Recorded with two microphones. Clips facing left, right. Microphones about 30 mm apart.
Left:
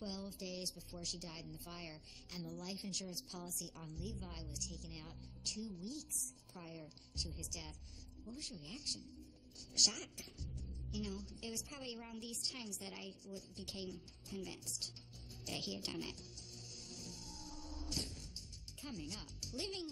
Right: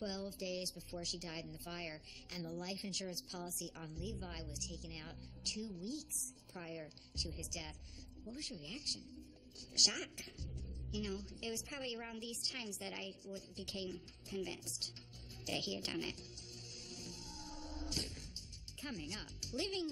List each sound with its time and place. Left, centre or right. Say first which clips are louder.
0.0 s a woman's voice: right 4 dB; right
3.1 s a woman's voice: right 2 dB; right
16.9 s music: right 1 dB; right
18.8 s a woman's voice: right 2 dB; right